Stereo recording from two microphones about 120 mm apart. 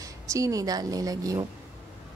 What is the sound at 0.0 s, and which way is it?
A woman's voice, 30° right (ahead or behind).